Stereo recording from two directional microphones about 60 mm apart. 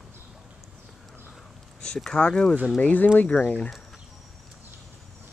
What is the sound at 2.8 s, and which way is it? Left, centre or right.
Speech, left.